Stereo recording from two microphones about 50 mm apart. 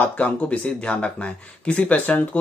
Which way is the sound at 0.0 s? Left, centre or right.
Left.